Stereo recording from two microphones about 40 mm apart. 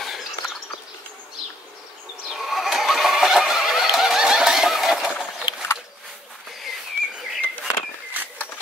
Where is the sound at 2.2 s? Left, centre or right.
Centre.